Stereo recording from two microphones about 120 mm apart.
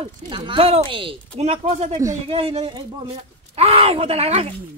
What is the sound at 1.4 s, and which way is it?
Speech, 65° right (ahead or behind).